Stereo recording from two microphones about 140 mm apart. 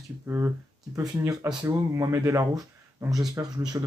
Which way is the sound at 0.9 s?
25° right (ahead or behind).